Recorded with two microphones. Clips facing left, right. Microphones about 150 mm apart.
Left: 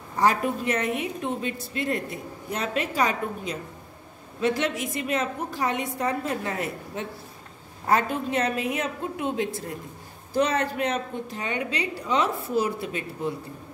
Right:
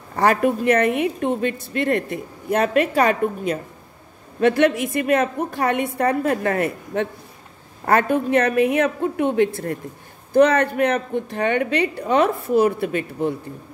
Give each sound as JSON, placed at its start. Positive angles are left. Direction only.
{"t": 0.1, "sound": "a woman's voice", "side_deg": -65}